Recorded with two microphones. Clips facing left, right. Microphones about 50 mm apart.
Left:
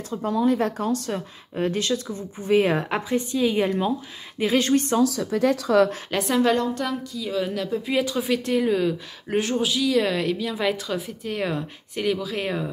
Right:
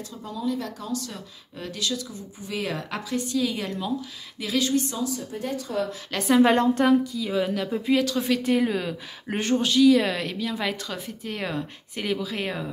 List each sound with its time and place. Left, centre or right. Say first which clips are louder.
0.1 s a woman's voice: left 8 dB; left
4.4 s a woman's voice: left 4 dB; left
5.0 s speech: left 9 dB; left
6.1 s speech: right 3 dB; centre
6.4 s a woman's voice: right 4 dB; right
7.1 s a woman's voice: right 1 dB; centre